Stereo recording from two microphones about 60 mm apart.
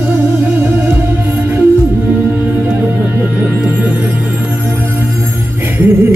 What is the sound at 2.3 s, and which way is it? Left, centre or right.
Music, right.